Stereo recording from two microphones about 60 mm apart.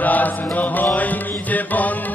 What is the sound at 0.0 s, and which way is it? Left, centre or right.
Mantra, left.